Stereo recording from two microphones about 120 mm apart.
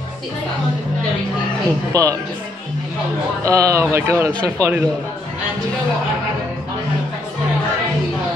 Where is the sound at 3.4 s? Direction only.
25° right (ahead or behind).